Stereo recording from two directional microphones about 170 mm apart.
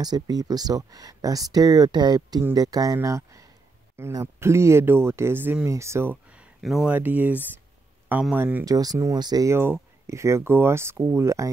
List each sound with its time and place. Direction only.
0.0 s speech: 25° right (ahead or behind)